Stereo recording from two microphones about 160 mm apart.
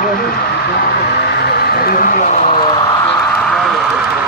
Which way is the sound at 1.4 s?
85° left.